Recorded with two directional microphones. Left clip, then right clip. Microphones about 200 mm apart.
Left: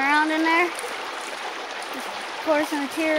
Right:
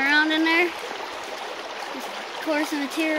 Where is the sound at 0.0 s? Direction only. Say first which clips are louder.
Even; 10° right (ahead or behind).